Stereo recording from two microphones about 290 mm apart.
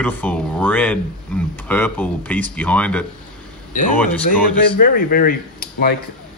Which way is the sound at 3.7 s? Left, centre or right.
Left.